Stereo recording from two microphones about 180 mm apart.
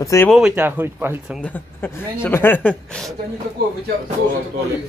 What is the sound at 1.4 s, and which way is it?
Speech, 10° left (ahead or behind).